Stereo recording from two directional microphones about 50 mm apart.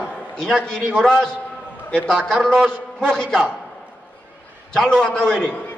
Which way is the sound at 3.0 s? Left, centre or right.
Centre.